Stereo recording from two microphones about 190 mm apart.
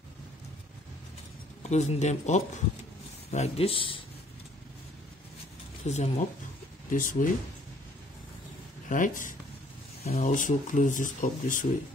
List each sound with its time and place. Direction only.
1.6 s speech: 35° left (ahead or behind)
5.9 s speech: 35° left (ahead or behind)
8.8 s speech: 45° left (ahead or behind)